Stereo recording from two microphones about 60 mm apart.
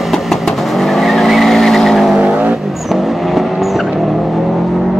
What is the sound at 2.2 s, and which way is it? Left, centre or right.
Vehicle, centre.